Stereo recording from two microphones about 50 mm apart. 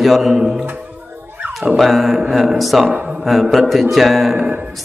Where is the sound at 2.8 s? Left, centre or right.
Right.